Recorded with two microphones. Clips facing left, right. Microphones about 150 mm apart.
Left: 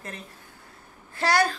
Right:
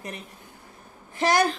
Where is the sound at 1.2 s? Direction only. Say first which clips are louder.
Right 2 dB; 20° right (ahead or behind).